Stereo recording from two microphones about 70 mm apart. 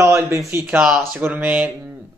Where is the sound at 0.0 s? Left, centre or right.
Right.